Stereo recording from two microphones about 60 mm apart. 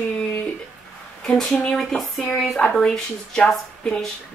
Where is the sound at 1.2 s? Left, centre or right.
Centre.